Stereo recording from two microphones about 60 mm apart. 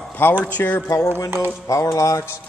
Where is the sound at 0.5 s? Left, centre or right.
Left.